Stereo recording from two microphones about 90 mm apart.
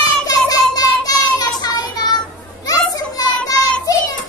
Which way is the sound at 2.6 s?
45° left (ahead or behind).